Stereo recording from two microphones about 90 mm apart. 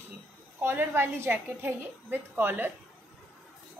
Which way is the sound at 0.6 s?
25° right (ahead or behind).